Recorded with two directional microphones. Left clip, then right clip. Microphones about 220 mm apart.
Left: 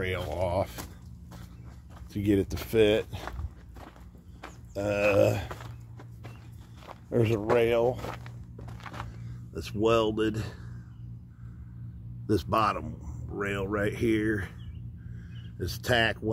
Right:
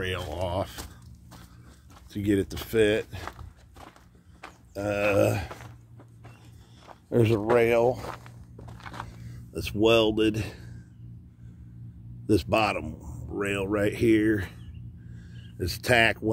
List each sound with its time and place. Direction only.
0.0 s speech: 10° right (ahead or behind)
2.1 s speech: 5° right (ahead or behind)
4.7 s speech: 15° right (ahead or behind)
7.1 s speech: 40° right (ahead or behind)
8.0 s walk: 5° left (ahead or behind)
8.7 s a sound: 10° right (ahead or behind)
9.5 s speech: 35° right (ahead or behind)
12.3 s speech: 25° right (ahead or behind)
15.1 s a sound: 30° right (ahead or behind)